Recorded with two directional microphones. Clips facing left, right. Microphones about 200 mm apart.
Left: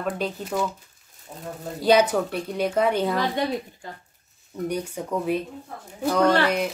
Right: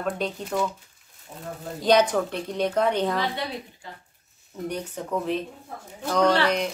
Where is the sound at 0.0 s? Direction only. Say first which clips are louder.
Left 1 dB; 5° left (ahead or behind).